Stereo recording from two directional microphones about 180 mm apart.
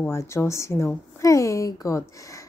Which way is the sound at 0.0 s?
15° left (ahead or behind).